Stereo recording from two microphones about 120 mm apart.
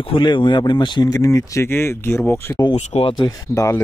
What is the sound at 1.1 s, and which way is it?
Speech, 25° left (ahead or behind).